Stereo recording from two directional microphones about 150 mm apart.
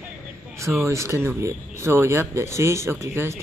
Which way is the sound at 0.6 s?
20° right (ahead or behind).